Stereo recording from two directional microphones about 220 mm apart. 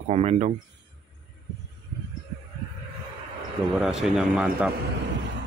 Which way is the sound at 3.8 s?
Centre (ahead or behind).